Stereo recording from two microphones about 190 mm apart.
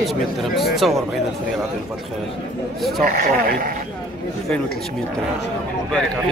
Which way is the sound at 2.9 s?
50° right (ahead or behind).